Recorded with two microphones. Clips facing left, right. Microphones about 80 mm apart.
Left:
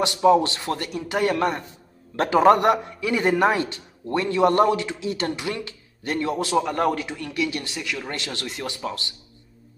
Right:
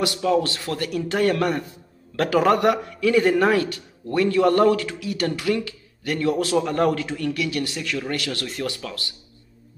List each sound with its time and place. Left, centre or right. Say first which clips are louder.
0.0 s a man's voice: left 3 dB; left
6.5 s a man's voice: left 2 dB; centre; by 7.7 s left
7.7 s speech: right 3 dB; centre
8.1 s a man's voice: right 3 dB; left